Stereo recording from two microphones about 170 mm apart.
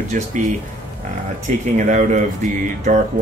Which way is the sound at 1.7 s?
45° right (ahead or behind).